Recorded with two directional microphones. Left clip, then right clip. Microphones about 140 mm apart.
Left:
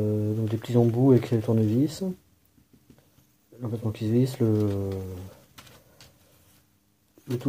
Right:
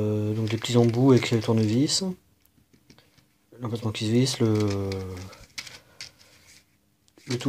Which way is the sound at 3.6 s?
10° right (ahead or behind).